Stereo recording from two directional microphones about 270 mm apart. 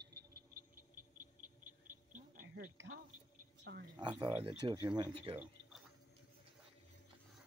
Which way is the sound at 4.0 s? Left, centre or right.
Centre.